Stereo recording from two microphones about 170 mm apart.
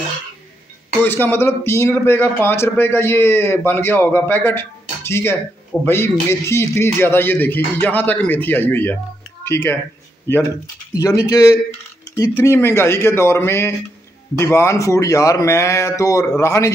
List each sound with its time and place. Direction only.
1.0 s a man's voice: 10° left (ahead or behind)
11.0 s a man's voice: 20° left (ahead or behind)